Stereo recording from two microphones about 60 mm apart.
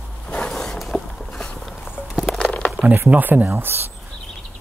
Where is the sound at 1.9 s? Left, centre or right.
Centre.